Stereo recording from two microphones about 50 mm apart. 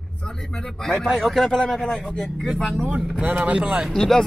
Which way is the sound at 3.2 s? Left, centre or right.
Right.